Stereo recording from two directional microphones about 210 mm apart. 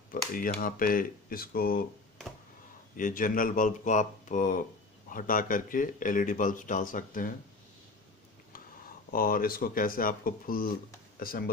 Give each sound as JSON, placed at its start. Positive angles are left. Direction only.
{"t": 0.1, "sound": "speech", "side_deg": 40}
{"t": 3.0, "sound": "speech", "side_deg": 40}
{"t": 9.1, "sound": "speech", "side_deg": 45}